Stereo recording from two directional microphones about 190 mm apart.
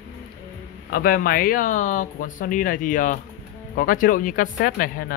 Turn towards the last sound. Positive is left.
turn(degrees=50)  # may be behind; listen again after turning